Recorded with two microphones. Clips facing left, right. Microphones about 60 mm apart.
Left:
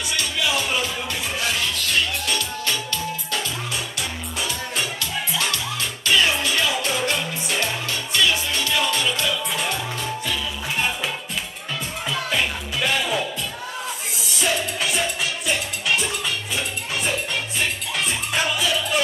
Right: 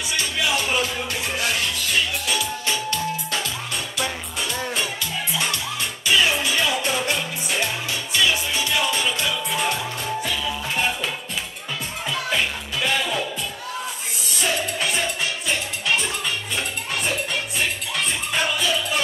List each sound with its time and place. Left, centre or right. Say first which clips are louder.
0.2 s music: right 1 dB; centre
6.0 s music: even; centre
12.1 s music: even; centre
14.4 s music: even; centre